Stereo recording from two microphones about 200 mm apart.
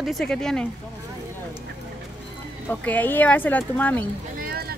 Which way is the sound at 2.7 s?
10° left (ahead or behind).